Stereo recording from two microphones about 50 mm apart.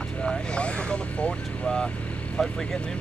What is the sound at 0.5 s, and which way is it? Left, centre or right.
Speech, left.